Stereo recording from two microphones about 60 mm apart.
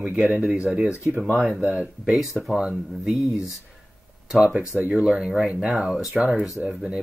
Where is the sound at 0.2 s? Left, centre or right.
Centre.